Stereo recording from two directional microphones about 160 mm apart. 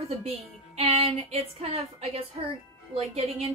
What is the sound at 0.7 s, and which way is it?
Speech, 35° right (ahead or behind).